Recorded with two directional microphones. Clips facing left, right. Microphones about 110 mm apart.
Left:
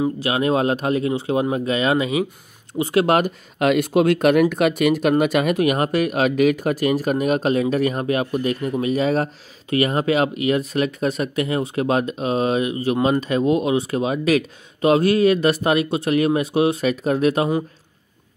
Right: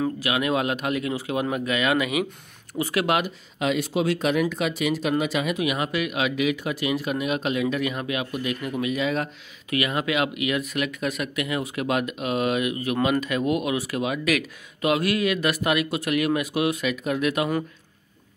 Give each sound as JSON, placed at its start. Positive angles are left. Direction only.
{"t": 0.2, "sound": "speech", "side_deg": 30}
{"t": 3.2, "sound": "speech", "side_deg": 55}